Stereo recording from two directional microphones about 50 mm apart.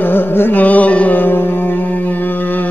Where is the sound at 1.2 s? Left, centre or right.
Left.